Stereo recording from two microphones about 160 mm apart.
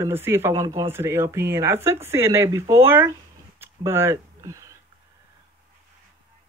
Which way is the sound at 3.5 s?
15° right (ahead or behind).